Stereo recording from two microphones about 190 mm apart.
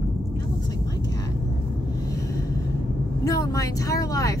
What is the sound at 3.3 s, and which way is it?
Speech, 20° left (ahead or behind).